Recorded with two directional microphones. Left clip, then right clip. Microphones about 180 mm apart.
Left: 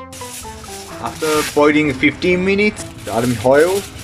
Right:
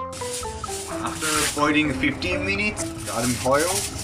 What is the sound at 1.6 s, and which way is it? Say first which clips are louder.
Speech: left 8 dB; 40° left (ahead or behind).